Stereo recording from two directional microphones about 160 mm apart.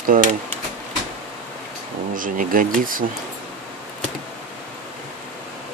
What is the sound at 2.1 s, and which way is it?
Speech, 60° right (ahead or behind).